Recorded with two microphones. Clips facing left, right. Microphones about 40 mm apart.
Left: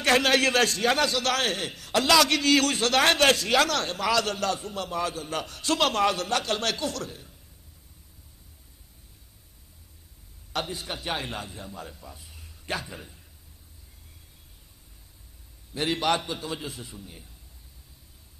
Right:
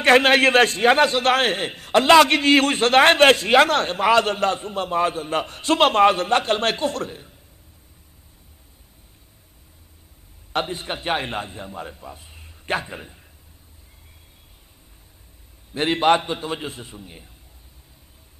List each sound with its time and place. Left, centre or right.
0.0 s a man's voice: right
10.5 s a man's voice: right
15.7 s a man's voice: right